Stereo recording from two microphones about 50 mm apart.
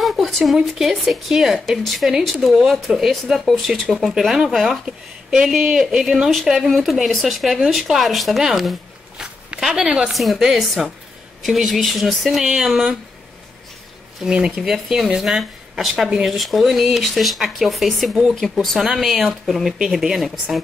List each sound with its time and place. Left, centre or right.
0.0 s speech: centre
3.3 s speech: centre
4.1 s a woman's voice: centre
9.8 s a woman's voice: centre
10.1 s speech: centre
14.2 s speech: centre
14.6 s a woman's voice: centre
19.8 s a woman's voice: centre